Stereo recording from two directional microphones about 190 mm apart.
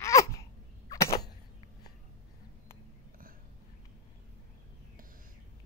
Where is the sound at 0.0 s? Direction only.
15° left (ahead or behind).